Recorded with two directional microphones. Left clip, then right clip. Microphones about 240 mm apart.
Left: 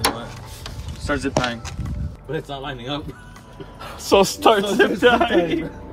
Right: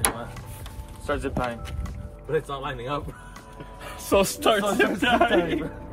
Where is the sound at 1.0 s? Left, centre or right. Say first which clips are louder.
Left 4 dB; centre.